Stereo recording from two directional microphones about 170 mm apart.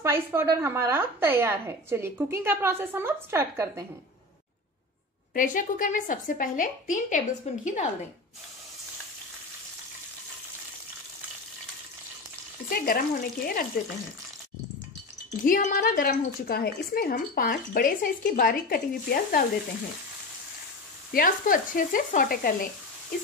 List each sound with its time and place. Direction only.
0.0 s a woman's voice: 15° right (ahead or behind)
5.3 s a woman's voice: 50° left (ahead or behind)
12.6 s a woman's voice: 60° left (ahead or behind)
15.4 s a woman's voice: 55° left (ahead or behind)
21.1 s a woman's voice: 55° left (ahead or behind)